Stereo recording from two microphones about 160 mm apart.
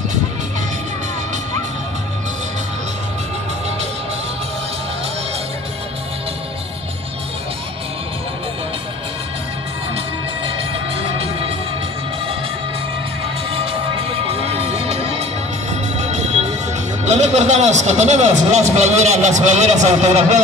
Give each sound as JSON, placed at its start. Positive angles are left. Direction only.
{"t": 11.0, "sound": "music", "side_deg": -35}
{"t": 13.5, "sound": "music", "side_deg": -35}
{"t": 17.0, "sound": "a man's voice", "side_deg": -45}